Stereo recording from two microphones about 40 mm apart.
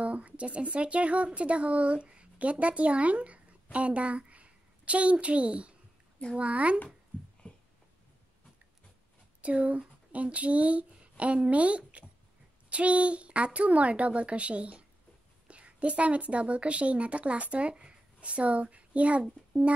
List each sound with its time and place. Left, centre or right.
0.0 s a woman's voice: right
7.4 s a sound: left
9.4 s a woman's voice: right